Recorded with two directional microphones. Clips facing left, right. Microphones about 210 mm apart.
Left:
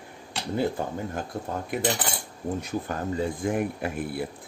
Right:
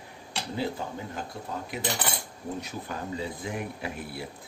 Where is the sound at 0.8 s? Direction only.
50° left (ahead or behind).